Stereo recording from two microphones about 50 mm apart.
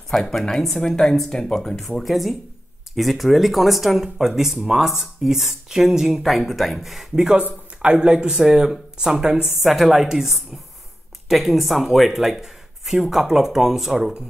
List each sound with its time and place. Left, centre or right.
0.1 s speech: centre
7.8 s speech: centre
9.7 s speech: centre